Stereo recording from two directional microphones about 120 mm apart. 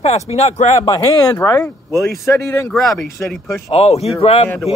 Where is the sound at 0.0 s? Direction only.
60° left (ahead or behind).